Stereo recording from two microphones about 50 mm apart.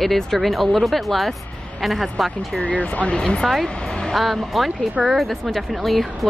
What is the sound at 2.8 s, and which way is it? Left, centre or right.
Speech, left.